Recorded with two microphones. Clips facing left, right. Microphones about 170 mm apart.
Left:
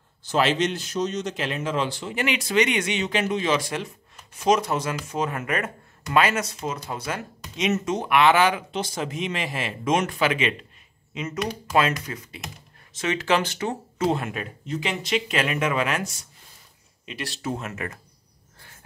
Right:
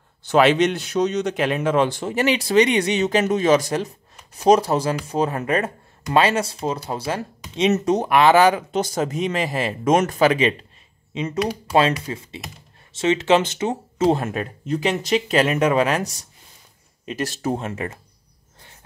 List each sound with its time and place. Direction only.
0.2 s a man's voice: 65° right (ahead or behind); by 14.1 s 20° right (ahead or behind)
14.1 s speech: 40° right (ahead or behind)
18.6 s a sound: 20° right (ahead or behind)